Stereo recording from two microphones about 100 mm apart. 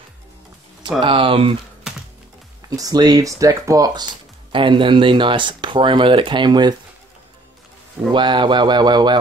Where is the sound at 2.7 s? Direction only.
40° right (ahead or behind).